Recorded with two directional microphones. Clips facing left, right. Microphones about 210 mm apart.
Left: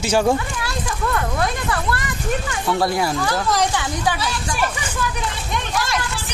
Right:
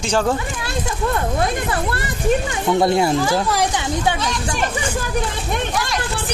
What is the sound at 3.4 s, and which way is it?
Speech, 10° right (ahead or behind).